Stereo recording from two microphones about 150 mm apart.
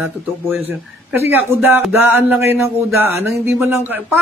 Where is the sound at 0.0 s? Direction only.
10° right (ahead or behind).